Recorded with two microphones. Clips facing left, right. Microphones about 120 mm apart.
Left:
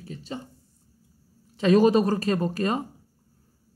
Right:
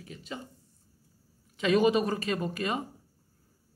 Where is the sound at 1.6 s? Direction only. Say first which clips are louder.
Left 5 dB; 35° left (ahead or behind).